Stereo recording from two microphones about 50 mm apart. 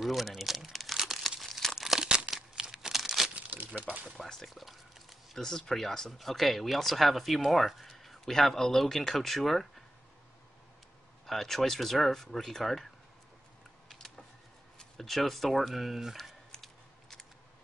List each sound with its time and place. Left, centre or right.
0.0 s speech: centre
0.7 s crumpling: centre
1.8 s crumpling: centre
2.0 s crumpling: centre
3.3 s crumpling: right
3.6 s a sound: right
4.2 s a sound: centre
5.4 s speech: centre
11.2 s speech: centre
14.8 s speech: centre
16.5 s a sound: centre